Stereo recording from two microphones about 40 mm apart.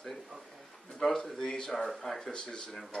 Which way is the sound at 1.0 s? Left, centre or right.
Centre.